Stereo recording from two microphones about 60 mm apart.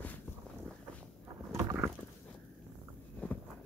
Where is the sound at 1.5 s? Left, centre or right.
Right.